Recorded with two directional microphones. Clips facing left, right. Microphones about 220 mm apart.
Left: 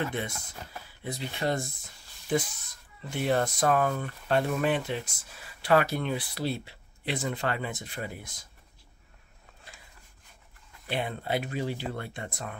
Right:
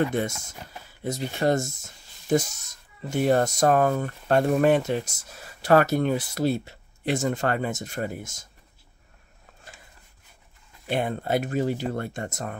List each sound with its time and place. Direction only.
1.0 s speech: 45° right (ahead or behind)
10.9 s speech: 45° right (ahead or behind)